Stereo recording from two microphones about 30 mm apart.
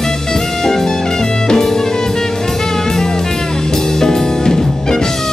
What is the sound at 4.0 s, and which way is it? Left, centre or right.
Music, centre.